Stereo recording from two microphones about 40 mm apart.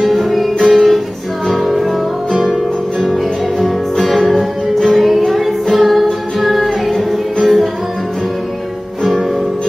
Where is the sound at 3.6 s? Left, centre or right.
Centre.